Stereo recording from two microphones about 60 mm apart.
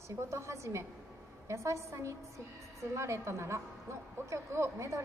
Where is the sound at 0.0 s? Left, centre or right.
Right.